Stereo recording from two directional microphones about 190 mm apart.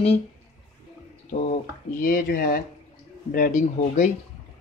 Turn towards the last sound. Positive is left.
turn(degrees=40)  # may be behind; listen again after turning